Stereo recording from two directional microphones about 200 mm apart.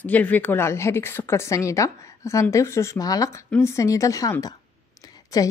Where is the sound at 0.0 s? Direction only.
10° left (ahead or behind).